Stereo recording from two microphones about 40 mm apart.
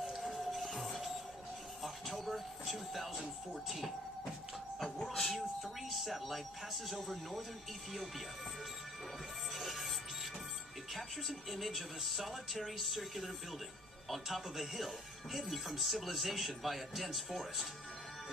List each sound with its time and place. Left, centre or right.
0.2 s music: centre
1.8 s a sound: centre
3.2 s speech: centre
5.0 s speech: centre
5.6 s speech: centre
9.5 s music: centre
10.9 s speech: centre